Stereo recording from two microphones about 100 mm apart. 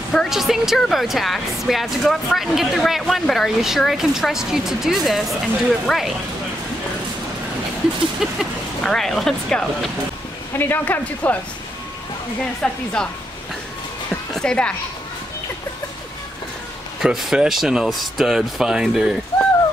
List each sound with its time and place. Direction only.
0.1 s speech: centre (ahead or behind)
8.2 s speech: centre (ahead or behind)
10.6 s speech: 20° left (ahead or behind)
12.6 s speech: 5° left (ahead or behind)
14.3 s a woman's voice: 10° left (ahead or behind)
17.0 s speech: 5° right (ahead or behind)